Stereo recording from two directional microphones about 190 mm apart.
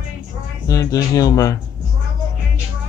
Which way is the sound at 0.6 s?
20° left (ahead or behind).